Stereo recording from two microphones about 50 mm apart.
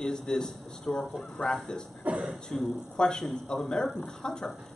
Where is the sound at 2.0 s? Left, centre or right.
Right.